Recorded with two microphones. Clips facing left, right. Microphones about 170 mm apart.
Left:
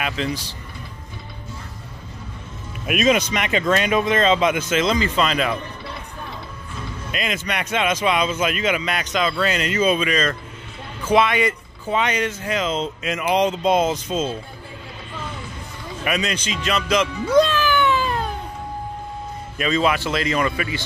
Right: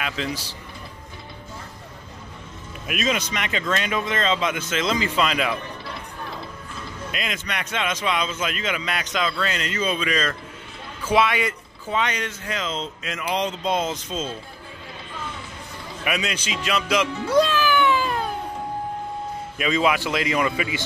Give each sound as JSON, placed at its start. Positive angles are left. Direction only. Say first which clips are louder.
{"t": 0.0, "sound": "speech", "louder": "left 3 dB", "side_deg": -5}
{"t": 2.9, "sound": "speech", "louder": "left 7 dB", "side_deg": 15}
{"t": 4.8, "sound": "speech", "louder": "right 1 dB", "side_deg": -5}
{"t": 7.1, "sound": "speech", "louder": "left 5 dB", "side_deg": 0}
{"t": 16.0, "sound": "speech", "louder": "left 3 dB", "side_deg": -5}
{"t": 19.6, "sound": "speech", "louder": "left 1 dB", "side_deg": -10}